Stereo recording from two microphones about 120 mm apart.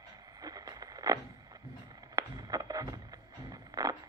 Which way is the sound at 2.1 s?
30° right (ahead or behind).